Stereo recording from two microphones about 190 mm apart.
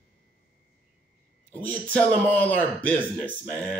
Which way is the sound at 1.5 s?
10° left (ahead or behind).